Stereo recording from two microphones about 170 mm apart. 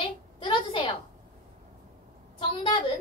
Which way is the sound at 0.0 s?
30° left (ahead or behind).